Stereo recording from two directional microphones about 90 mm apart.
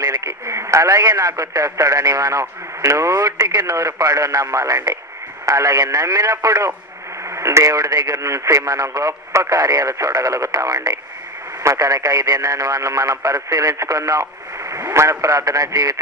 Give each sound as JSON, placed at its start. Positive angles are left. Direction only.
{"t": 0.2, "sound": "speech", "side_deg": -35}
{"t": 11.6, "sound": "speech", "side_deg": -35}